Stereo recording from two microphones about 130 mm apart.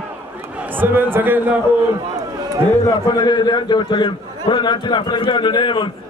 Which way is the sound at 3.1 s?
35° left (ahead or behind).